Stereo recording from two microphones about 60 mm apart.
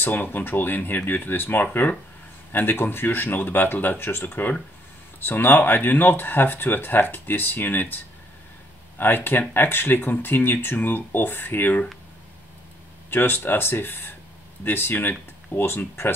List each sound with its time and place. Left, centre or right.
0.0 s speech: left
13.1 s speech: left